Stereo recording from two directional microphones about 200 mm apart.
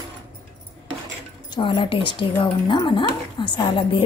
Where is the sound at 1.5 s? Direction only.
25° left (ahead or behind).